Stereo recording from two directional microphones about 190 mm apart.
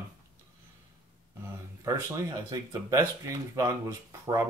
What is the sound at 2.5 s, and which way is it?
Speech, 15° right (ahead or behind).